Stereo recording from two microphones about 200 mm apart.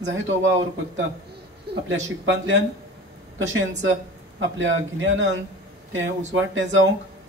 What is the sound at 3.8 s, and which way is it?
A man's voice, 70° right (ahead or behind).